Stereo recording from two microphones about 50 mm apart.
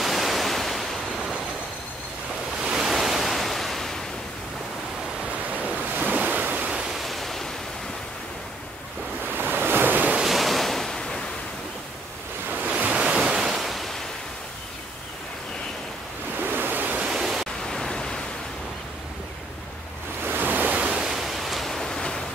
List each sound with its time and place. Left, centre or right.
0.0 s pink noise: centre
2.6 s waves: centre
5.9 s waves: right
6.6 s pink noise: centre
7.0 s waves: centre
9.3 s waves: right
10.2 s waves: centre
12.6 s waves: right; by 13.9 s centre
16.3 s waves: right
17.1 s pink noise: centre
17.6 s pink noise: centre
20.2 s waves: right
21.0 s pink noise: centre